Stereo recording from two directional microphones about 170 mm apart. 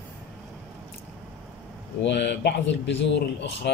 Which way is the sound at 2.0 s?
85° left.